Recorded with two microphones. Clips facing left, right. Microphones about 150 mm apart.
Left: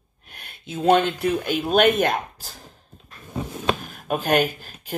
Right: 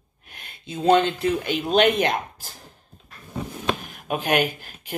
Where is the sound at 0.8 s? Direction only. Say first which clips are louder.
Even; 20° right (ahead or behind).